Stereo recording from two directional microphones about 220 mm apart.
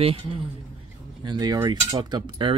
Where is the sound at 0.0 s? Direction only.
25° right (ahead or behind).